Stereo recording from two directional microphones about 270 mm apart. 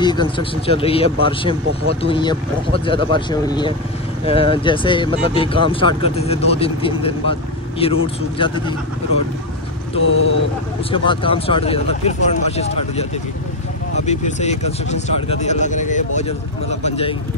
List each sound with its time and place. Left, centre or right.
0.0 s speech: centre
9.9 s speech: left
10.9 s speech: centre
14.0 s speech: left